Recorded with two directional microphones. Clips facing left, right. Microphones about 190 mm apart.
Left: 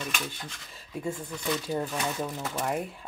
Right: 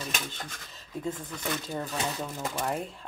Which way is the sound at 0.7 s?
10° left (ahead or behind).